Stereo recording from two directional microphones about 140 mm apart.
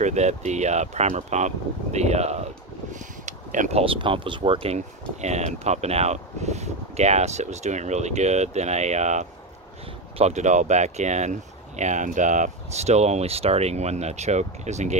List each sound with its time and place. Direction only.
0.0 s speech: 55° right (ahead or behind)
2.9 s a sound: 60° right (ahead or behind)
3.8 s speech: 40° right (ahead or behind)